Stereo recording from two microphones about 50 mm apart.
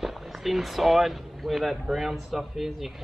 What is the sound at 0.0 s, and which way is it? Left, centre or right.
Speech, centre.